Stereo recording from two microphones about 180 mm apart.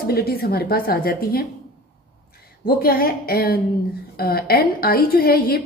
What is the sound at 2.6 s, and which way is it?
A woman's voice, 55° left (ahead or behind).